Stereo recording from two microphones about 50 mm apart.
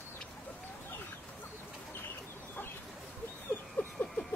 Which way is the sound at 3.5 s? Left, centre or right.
Left.